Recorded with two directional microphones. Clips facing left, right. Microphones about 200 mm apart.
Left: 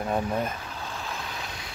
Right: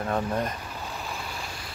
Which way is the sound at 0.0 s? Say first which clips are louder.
Even; 10° left (ahead or behind).